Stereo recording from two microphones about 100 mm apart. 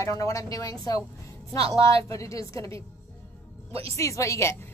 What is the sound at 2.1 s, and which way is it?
Speech, 30° left (ahead or behind).